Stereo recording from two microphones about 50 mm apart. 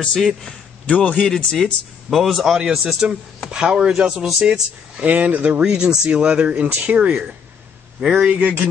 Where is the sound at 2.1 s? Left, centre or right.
Centre.